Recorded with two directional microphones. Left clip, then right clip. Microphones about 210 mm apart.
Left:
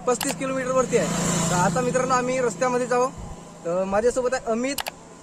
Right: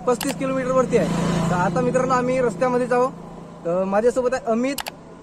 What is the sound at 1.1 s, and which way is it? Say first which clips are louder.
Speech: right 1 dB; 40° left (ahead or behind).